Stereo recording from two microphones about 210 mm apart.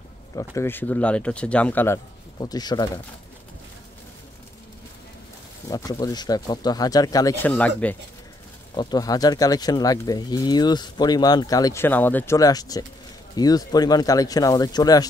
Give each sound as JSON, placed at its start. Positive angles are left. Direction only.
{"t": 0.4, "sound": "speech", "side_deg": 10}
{"t": 2.3, "sound": "speech", "side_deg": 20}
{"t": 5.7, "sound": "speech", "side_deg": 15}
{"t": 8.7, "sound": "speech", "side_deg": 20}